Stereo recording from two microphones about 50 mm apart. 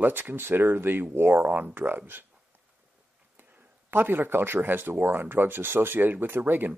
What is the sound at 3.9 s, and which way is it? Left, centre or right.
Speech, right.